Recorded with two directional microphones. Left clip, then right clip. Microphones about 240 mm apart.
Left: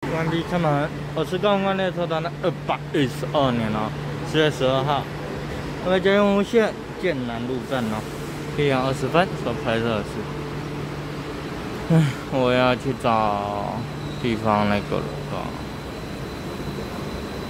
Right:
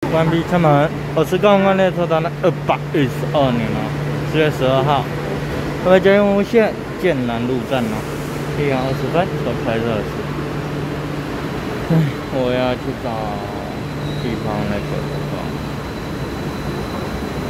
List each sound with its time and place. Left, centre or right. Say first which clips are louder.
0.5 s speech: right 9 dB; centre
8.6 s speech: right 2 dB; centre
12.4 s speech: right 1 dB; centre